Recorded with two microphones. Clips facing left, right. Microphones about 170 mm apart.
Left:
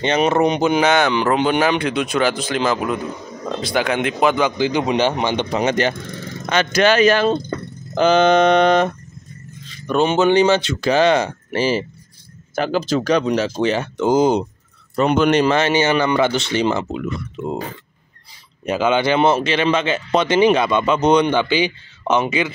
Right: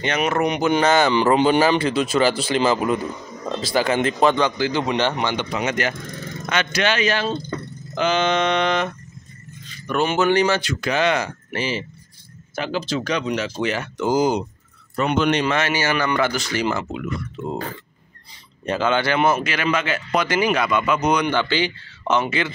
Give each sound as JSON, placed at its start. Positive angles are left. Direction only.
{"t": 0.0, "sound": "speech", "side_deg": 25}
{"t": 0.7, "sound": "speech", "side_deg": 0}
{"t": 2.3, "sound": "speech", "side_deg": 50}
{"t": 2.6, "sound": "speech", "side_deg": -5}
{"t": 5.5, "sound": "speech", "side_deg": 35}
{"t": 9.8, "sound": "speech", "side_deg": 20}
{"t": 15.1, "sound": "speech", "side_deg": 45}
{"t": 15.5, "sound": "speech", "side_deg": 25}
{"t": 18.6, "sound": "speech", "side_deg": 15}
{"t": 21.4, "sound": "speech", "side_deg": 15}